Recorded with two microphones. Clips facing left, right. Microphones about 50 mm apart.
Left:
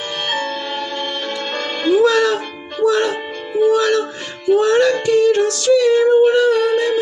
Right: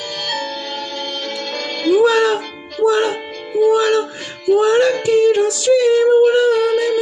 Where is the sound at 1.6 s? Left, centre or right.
Left.